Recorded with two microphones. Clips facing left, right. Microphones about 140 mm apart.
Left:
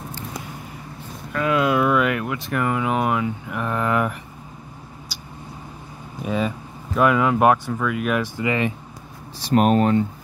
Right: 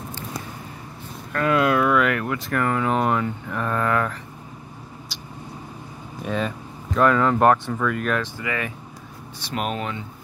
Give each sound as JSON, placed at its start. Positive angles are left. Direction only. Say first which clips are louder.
{"t": 1.3, "sound": "speech", "louder": "even", "side_deg": 0}
{"t": 5.1, "sound": "vehicle", "louder": "even", "side_deg": 0}
{"t": 6.2, "sound": "speech", "louder": "left 2 dB", "side_deg": 5}
{"t": 8.4, "sound": "speech", "louder": "left 6 dB", "side_deg": 20}
{"t": 9.4, "sound": "speech", "louder": "left 10 dB", "side_deg": 45}